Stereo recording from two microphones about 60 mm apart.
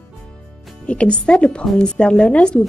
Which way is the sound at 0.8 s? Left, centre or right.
Centre.